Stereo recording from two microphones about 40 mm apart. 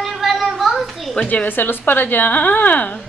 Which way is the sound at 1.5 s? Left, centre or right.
Left.